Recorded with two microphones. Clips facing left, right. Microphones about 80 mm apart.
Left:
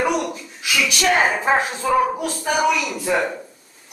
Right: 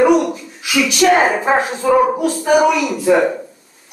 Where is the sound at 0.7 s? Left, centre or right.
Centre.